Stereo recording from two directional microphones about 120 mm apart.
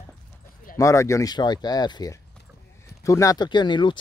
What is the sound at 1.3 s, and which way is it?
Speech, 35° left (ahead or behind).